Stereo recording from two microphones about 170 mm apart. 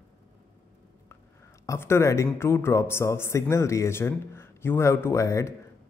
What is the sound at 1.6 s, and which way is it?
Speech, 15° left (ahead or behind).